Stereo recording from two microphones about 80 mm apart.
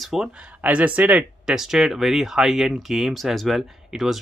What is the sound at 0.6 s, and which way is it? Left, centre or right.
Speech, centre.